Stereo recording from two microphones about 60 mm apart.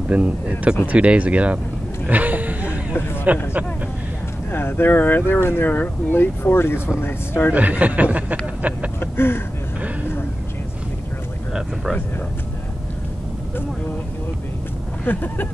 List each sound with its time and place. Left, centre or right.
0.1 s speech: right
2.0 s a sound: right
3.3 s speech: right
4.5 s speech: left
7.5 s speech: right
9.0 s a sound: left
15.1 s speech: left